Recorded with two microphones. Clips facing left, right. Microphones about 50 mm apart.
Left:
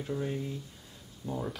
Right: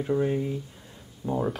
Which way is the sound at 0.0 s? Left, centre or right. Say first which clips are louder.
Right 9 dB; right.